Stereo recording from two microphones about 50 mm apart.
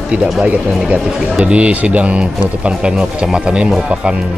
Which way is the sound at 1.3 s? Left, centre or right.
Right.